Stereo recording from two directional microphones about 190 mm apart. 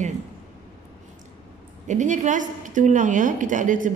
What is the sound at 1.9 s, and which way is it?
A woman's voice, 40° right (ahead or behind).